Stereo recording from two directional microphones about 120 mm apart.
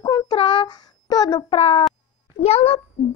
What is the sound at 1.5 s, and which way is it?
Speech, 55° left (ahead or behind).